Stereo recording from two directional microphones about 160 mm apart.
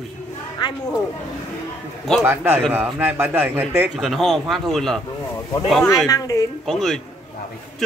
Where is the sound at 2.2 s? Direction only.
15° right (ahead or behind).